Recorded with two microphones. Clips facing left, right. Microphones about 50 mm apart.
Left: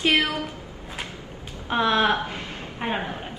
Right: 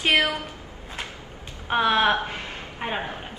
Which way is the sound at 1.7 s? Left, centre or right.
Centre.